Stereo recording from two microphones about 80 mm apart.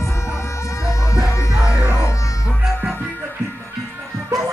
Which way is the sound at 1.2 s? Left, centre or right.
Centre.